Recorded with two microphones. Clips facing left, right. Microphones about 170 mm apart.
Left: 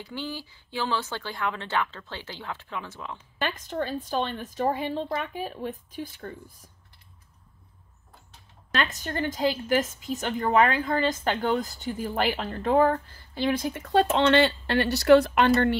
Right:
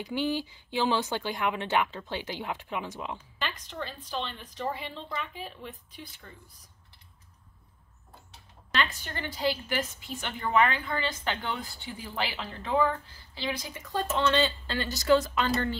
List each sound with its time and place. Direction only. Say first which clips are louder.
0.0 s speech: right 5 dB; 15° right (ahead or behind)
3.3 s a woman's voice: left 10 dB; 45° left (ahead or behind)
8.7 s a woman's voice: left 3 dB; 45° left (ahead or behind); by 15.8 s 65° left (ahead or behind)